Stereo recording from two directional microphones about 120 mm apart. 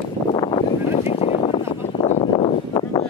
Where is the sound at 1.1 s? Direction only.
55° left (ahead or behind).